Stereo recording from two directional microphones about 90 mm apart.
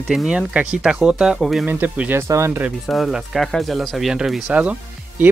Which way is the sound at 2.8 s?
Centre (ahead or behind).